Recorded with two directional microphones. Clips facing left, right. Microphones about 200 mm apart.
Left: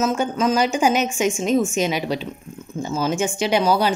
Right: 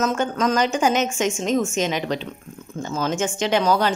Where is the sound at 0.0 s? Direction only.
10° left (ahead or behind).